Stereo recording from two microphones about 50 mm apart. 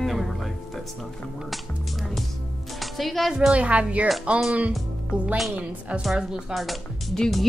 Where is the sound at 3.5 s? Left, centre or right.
Right.